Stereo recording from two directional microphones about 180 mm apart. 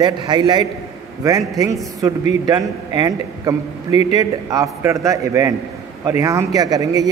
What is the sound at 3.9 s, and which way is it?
Speech, 35° left (ahead or behind).